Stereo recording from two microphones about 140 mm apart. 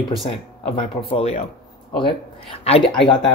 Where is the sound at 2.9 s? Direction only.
30° left (ahead or behind).